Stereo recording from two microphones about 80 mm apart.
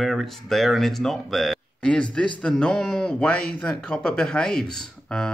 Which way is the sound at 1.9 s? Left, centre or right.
Centre.